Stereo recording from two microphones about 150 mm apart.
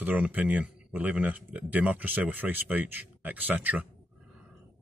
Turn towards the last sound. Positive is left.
turn(degrees=-10)  # may be behind; listen again after turning